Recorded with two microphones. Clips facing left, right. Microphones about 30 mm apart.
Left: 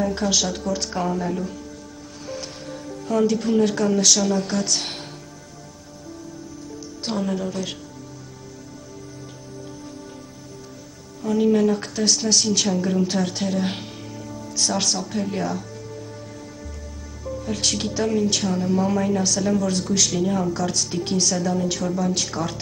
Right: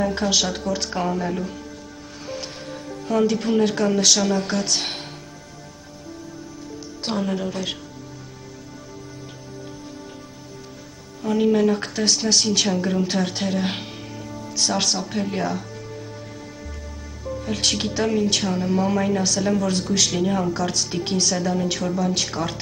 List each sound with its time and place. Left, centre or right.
0.0 s a woman's voice: right
7.1 s a woman's voice: centre
11.2 s a woman's voice: right
17.4 s a woman's voice: right